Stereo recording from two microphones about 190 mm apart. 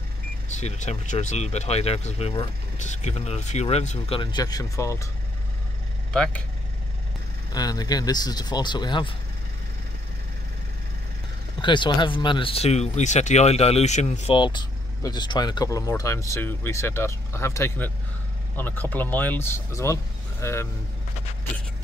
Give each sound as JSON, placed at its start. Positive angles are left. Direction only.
{"t": 0.6, "sound": "speech", "side_deg": 35}
{"t": 6.1, "sound": "speech", "side_deg": 5}
{"t": 7.5, "sound": "speech", "side_deg": 20}
{"t": 11.6, "sound": "speech", "side_deg": 25}